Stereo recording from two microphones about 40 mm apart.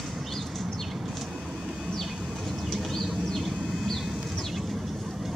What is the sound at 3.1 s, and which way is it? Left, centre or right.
Vehicle, centre.